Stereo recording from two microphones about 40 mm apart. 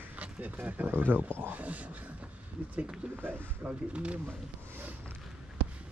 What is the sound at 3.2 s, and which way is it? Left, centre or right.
Speech, right.